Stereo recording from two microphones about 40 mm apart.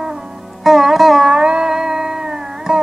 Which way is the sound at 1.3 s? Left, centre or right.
Centre.